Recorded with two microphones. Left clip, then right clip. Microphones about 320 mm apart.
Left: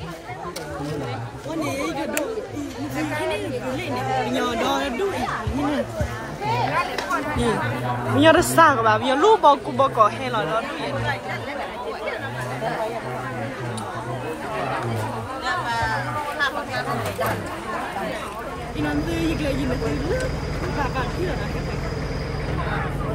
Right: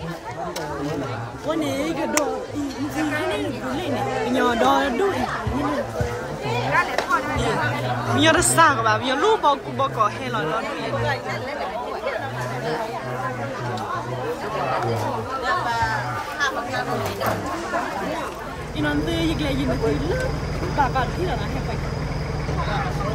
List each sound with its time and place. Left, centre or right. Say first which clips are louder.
4.3 s speech: right 4 dB; centre
8.2 s speech: left 2 dB; centre
15.4 s music: right 1 dB; centre
16.3 s speech: right 2 dB; centre